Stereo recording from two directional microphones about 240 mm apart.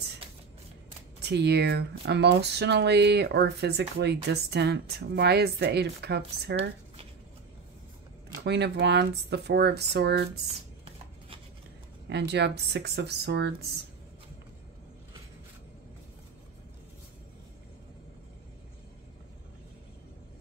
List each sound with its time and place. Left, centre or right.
1.2 s speech: right
8.5 s speech: right
12.1 s speech: right